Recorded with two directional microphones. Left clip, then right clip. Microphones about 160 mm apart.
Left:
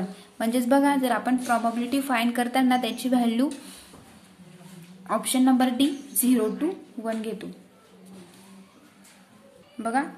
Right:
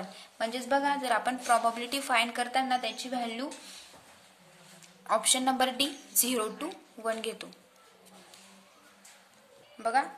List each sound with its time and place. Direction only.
0.4 s speech: centre (ahead or behind)
1.5 s a woman's voice: 20° right (ahead or behind)
2.3 s speech: centre (ahead or behind)
5.0 s a woman's voice: 20° right (ahead or behind)
9.8 s a woman's voice: 15° right (ahead or behind)